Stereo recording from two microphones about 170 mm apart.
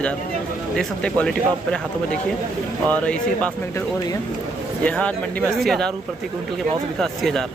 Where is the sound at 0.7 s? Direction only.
5° left (ahead or behind).